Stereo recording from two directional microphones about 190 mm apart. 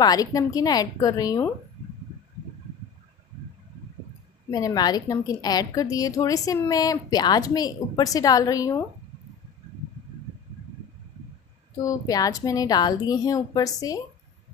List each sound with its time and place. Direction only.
0.0 s a woman's voice: 20° left (ahead or behind)
4.5 s a woman's voice: 20° left (ahead or behind)
11.8 s a woman's voice: 20° left (ahead or behind)